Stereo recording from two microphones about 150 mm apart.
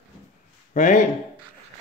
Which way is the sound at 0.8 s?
60° left (ahead or behind).